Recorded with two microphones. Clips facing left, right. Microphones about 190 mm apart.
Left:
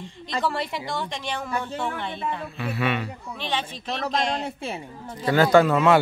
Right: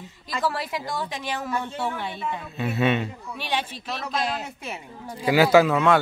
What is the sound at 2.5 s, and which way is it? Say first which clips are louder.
Speech: right 5 dB; 25° right (ahead or behind).